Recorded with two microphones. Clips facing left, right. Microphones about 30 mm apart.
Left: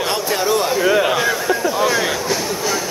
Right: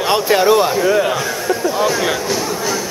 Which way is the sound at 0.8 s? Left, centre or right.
Centre.